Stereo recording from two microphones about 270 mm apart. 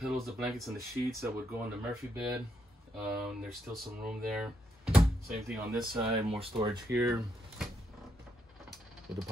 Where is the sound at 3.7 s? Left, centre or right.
Centre.